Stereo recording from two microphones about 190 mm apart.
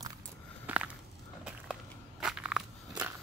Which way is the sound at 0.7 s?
10° right (ahead or behind).